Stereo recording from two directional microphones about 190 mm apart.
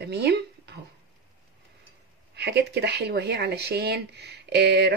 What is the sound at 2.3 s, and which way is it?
Speech, 60° right (ahead or behind).